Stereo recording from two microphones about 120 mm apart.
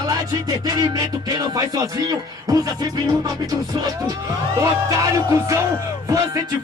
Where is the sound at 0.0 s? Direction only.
30° right (ahead or behind).